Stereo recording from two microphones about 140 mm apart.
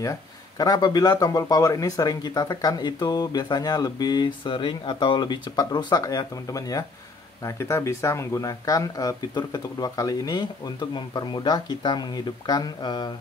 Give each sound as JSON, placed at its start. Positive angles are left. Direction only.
{"t": 0.0, "sound": "speech", "side_deg": 25}